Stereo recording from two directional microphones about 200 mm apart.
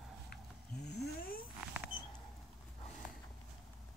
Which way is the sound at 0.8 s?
55° left (ahead or behind).